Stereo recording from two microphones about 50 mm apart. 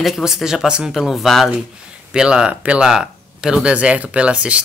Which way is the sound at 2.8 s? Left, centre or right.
Centre.